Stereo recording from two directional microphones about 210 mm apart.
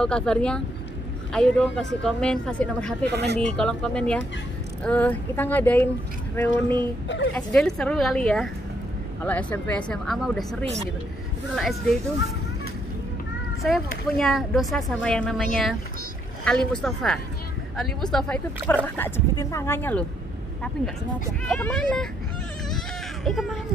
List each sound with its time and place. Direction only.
0.0 s speech: 5° left (ahead or behind)
3.1 s speech: 55° right (ahead or behind)
3.3 s speech: 5° left (ahead or behind)
13.6 s speech: centre (ahead or behind)
21.5 s speech: 5° left (ahead or behind)
23.2 s speech: centre (ahead or behind)